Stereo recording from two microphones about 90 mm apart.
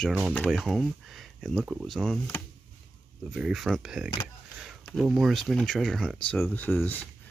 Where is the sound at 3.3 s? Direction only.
5° right (ahead or behind).